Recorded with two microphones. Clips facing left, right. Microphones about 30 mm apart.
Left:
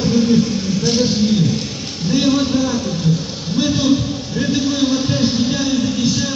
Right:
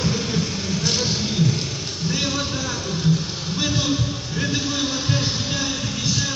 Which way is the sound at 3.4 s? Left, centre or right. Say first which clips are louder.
Left 8 dB; left.